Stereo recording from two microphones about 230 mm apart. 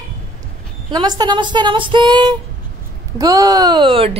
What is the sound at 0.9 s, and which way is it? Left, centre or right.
Speech, centre.